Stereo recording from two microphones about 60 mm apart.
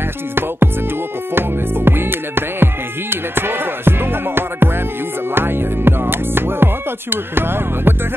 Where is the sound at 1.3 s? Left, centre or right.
Right.